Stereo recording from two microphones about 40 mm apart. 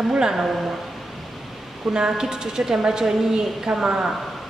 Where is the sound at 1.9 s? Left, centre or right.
Right.